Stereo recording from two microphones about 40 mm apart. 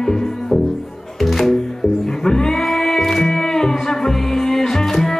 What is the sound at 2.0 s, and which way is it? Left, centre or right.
Music, centre.